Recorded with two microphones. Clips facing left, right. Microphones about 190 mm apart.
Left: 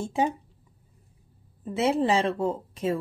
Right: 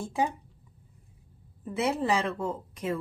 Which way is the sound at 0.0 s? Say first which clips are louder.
Left 3 dB; 25° left (ahead or behind).